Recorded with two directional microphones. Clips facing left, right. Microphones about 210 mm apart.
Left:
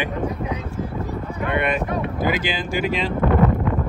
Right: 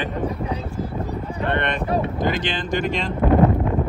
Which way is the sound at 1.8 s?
30° right (ahead or behind).